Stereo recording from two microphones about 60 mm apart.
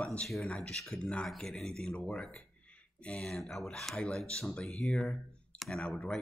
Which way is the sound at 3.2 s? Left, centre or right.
Centre.